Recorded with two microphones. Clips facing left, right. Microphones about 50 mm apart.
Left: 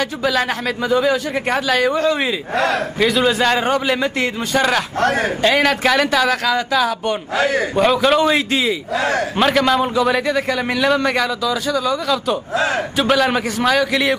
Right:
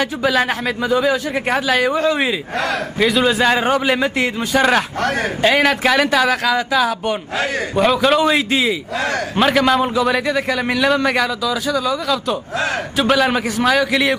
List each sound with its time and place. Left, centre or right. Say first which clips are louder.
0.0 s a man's voice: right 2 dB; centre
2.5 s a man's voice: left 2 dB; centre
7.3 s a man's voice: left 7 dB; left
7.7 s a man's voice: right 2 dB; centre
8.9 s a man's voice: left 2 dB; left
9.4 s a man's voice: right 2 dB; centre